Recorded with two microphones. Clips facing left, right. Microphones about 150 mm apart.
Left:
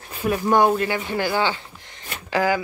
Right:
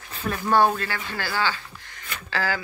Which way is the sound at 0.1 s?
15° left (ahead or behind).